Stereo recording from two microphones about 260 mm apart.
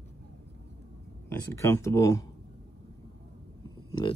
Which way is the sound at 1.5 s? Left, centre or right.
Centre.